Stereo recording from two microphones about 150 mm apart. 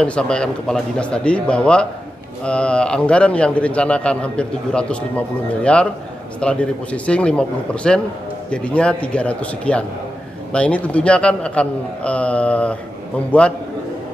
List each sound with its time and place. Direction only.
0.0 s a man's voice: 5° left (ahead or behind)